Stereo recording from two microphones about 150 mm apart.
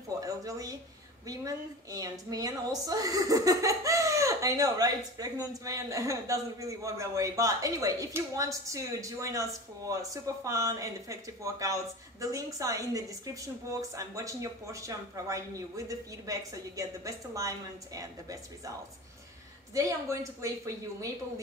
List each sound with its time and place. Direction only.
0.2 s a sound: 25° right (ahead or behind)
1.2 s a woman's voice: 25° right (ahead or behind)
19.7 s a woman's voice: 20° right (ahead or behind)